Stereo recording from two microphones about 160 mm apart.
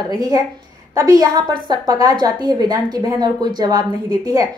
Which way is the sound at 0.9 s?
20° right (ahead or behind).